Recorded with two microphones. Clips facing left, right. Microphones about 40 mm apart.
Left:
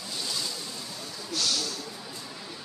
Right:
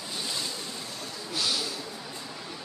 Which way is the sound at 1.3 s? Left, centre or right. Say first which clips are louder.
Even; centre.